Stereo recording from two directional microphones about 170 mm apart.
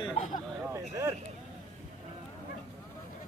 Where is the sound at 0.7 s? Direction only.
15° right (ahead or behind).